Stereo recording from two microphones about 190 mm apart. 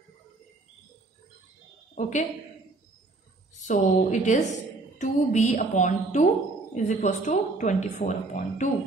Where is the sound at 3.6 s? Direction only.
40° left (ahead or behind).